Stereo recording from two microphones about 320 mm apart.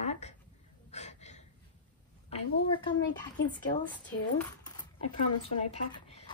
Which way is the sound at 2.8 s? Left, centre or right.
Centre.